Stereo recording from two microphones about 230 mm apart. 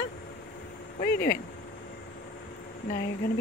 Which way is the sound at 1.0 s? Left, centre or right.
Left.